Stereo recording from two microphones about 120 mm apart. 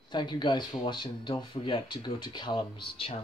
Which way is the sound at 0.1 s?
40° left (ahead or behind).